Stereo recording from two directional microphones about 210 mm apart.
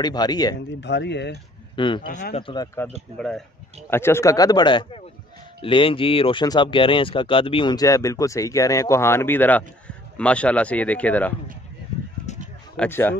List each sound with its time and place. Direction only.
0.0 s speech: 20° left (ahead or behind)
0.7 s speech: 55° left (ahead or behind)
1.8 s speech: 25° left (ahead or behind)
2.0 s speech: 40° left (ahead or behind)
2.3 s speech: 20° left (ahead or behind)
3.2 s speech: centre (ahead or behind)
12.3 s a sound: 35° left (ahead or behind)
12.7 s speech: 10° left (ahead or behind)